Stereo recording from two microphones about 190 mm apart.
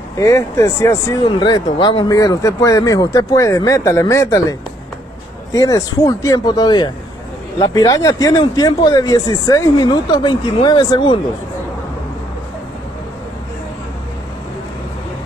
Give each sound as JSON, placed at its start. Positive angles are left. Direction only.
{"t": 0.2, "sound": "speech", "side_deg": 15}